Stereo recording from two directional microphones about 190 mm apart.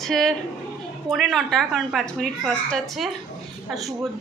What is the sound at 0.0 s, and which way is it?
A woman's voice, centre (ahead or behind).